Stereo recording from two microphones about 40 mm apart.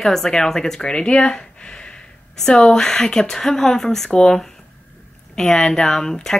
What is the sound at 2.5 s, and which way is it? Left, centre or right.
Speech, centre.